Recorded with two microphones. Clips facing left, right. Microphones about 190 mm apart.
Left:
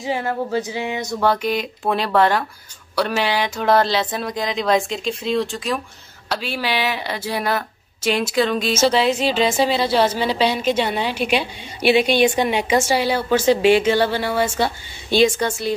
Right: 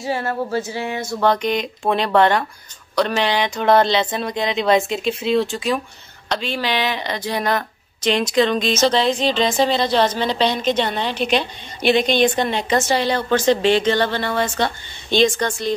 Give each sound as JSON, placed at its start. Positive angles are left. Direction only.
{"t": 0.0, "sound": "speech", "side_deg": 15}
{"t": 1.2, "sound": "speech", "side_deg": 5}